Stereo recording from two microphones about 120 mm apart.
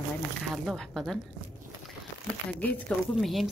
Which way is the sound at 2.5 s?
15° left (ahead or behind).